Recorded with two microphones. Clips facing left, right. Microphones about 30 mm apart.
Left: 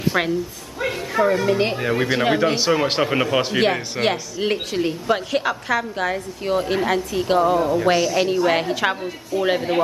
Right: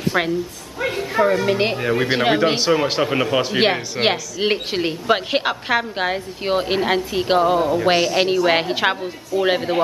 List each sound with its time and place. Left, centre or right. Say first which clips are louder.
0.1 s a man's voice: right 1 dB; centre; by 1.8 s right
1.8 s a man's voice: right 1 dB; centre
2.0 s speech: right 2 dB; right
2.5 s a man's voice: right 1 dB; centre
4.0 s a woman's voice: right 3 dB; right
9.3 s speech: right 2 dB; centre